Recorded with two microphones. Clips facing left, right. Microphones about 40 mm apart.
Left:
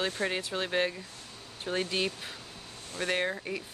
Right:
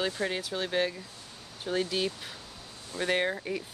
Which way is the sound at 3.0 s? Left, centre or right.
Centre.